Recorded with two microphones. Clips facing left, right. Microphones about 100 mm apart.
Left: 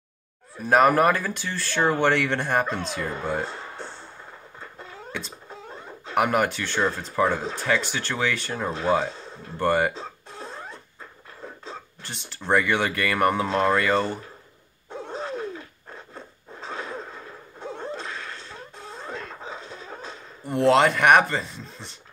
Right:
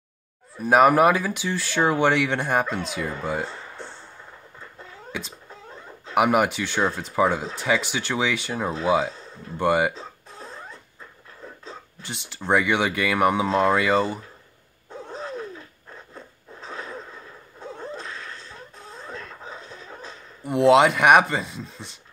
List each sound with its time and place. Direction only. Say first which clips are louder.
0.6 s speech: right 2 dB; 5° right (ahead or behind)
3.4 s music: left 1 dB; 15° left (ahead or behind)
5.1 s speech: right 1 dB; 5° right (ahead or behind)
5.5 s dog: left 2 dB; 20° left (ahead or behind)
6.1 s speech: right 2 dB; 10° right (ahead or behind)
10.4 s rodents: left 2 dB; 25° left (ahead or behind)
12.0 s speech: right 3 dB; 5° right (ahead or behind)
14.9 s a sound: left 2 dB; 20° left (ahead or behind)
17.6 s a sound: left 2 dB; 20° left (ahead or behind)
18.0 s wheeze: left 2 dB; 65° left (ahead or behind)
19.2 s music: left 2 dB; 30° left (ahead or behind)
20.4 s speech: right 2 dB; 5° right (ahead or behind)